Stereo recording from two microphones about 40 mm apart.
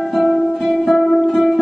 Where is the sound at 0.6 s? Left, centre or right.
Centre.